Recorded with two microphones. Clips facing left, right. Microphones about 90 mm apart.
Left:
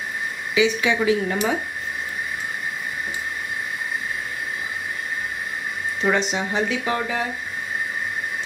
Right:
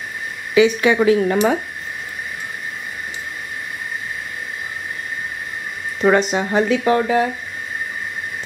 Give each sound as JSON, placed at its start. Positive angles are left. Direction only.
{"t": 0.6, "sound": "speech", "side_deg": -55}
{"t": 6.0, "sound": "speech", "side_deg": -50}